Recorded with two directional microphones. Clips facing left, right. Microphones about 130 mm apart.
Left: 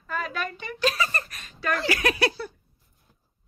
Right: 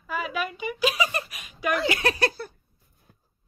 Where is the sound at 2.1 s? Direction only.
45° right (ahead or behind).